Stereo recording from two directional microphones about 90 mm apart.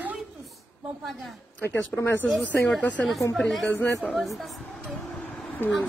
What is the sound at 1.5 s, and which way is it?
Speech, 25° left (ahead or behind).